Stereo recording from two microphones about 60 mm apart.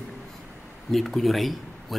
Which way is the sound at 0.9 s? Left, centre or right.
Centre.